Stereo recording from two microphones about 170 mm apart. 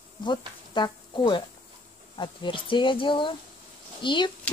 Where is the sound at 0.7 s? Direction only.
25° left (ahead or behind).